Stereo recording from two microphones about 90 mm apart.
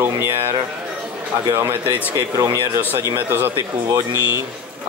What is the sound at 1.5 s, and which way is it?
Speech, 25° right (ahead or behind).